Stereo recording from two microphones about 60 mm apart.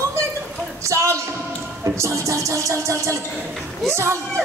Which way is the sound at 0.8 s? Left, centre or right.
Right.